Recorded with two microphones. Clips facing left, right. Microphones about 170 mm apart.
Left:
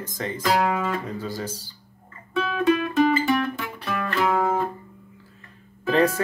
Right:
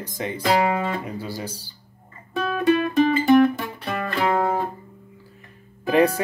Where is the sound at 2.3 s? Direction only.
45° right (ahead or behind).